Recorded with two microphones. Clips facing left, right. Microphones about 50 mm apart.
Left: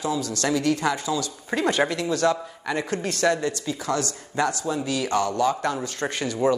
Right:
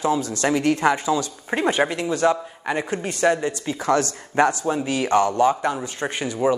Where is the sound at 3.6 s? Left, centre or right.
Right.